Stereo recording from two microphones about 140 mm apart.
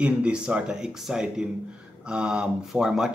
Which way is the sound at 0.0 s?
10° right (ahead or behind).